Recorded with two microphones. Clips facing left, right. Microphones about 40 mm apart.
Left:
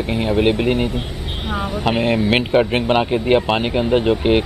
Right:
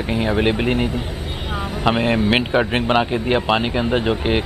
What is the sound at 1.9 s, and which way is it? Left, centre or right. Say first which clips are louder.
Speech: even; centre.